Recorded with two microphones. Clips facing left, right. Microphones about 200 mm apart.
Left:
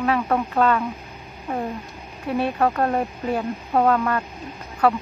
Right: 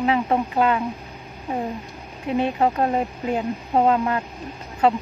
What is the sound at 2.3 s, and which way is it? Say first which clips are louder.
Speech: right 1 dB; 20° right (ahead or behind).